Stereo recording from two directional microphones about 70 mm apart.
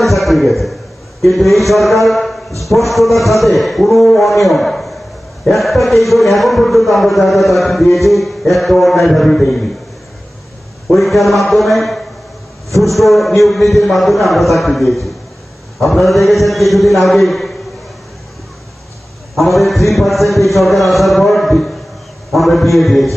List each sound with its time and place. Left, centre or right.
0.0 s a sound: centre
1.2 s a man's voice: centre
10.9 s a man's voice: centre
19.3 s a man's voice: centre